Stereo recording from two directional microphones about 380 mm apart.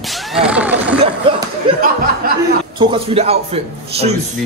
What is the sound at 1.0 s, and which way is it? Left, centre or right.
Speech, centre.